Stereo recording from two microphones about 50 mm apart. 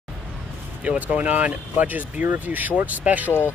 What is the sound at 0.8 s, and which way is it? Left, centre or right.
Speech, right.